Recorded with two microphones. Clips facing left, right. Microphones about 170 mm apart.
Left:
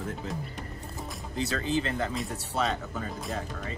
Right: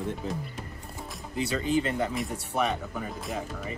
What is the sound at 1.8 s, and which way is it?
Speech, 20° right (ahead or behind).